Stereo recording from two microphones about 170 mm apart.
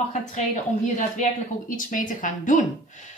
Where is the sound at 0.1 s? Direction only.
45° left (ahead or behind).